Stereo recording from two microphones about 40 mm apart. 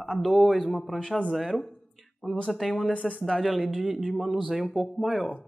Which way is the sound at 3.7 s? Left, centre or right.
Centre.